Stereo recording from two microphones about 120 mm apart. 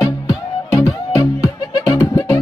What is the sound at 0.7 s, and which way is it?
Music, 25° left (ahead or behind).